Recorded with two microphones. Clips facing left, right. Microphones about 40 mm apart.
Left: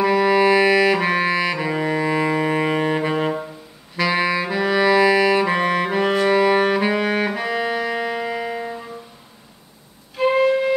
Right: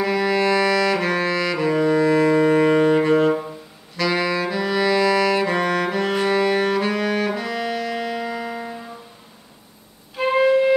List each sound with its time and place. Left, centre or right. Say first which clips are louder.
0.0 s music: left 4 dB; centre
3.9 s saxophone: left 2 dB; centre
6.2 s music: left 3 dB; centre
10.1 s music: even; centre